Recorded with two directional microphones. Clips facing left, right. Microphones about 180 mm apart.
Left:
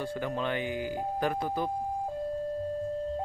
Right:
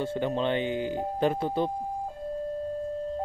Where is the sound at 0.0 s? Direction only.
25° right (ahead or behind).